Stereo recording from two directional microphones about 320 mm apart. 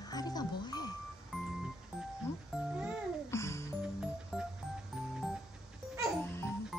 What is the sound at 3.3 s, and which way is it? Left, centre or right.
Music, centre.